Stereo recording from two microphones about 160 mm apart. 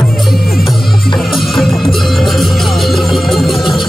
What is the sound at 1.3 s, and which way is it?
Music, centre (ahead or behind).